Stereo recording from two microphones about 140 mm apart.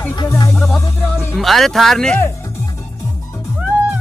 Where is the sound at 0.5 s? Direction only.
Centre (ahead or behind).